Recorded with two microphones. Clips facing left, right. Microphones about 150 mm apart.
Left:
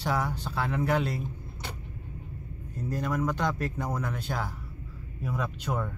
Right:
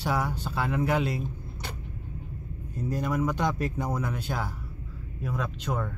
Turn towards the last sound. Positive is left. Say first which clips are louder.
# even
turn(degrees=10)  # may be behind; listen again after turning